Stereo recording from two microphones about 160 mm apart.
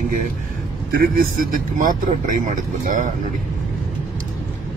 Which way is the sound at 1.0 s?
60° right (ahead or behind).